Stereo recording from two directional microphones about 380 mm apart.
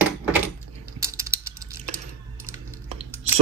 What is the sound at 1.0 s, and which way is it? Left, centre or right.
Typing, centre.